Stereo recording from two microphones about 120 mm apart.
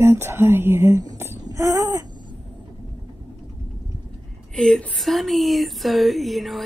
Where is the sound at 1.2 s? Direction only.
25° right (ahead or behind).